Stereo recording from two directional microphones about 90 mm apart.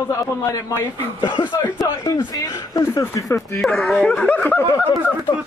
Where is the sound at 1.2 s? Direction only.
60° left (ahead or behind).